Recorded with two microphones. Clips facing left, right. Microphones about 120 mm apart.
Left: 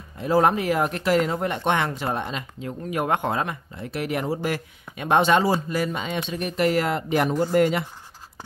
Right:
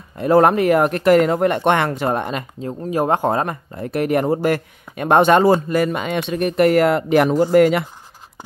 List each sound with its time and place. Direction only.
0.2 s speech: 60° right (ahead or behind)
2.6 s speech: 30° right (ahead or behind); by 7.8 s 75° right (ahead or behind)